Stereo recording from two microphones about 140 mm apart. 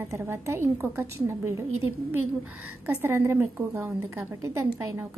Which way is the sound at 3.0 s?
15° right (ahead or behind).